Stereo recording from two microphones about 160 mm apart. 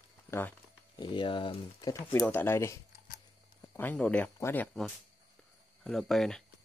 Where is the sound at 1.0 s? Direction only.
30° left (ahead or behind).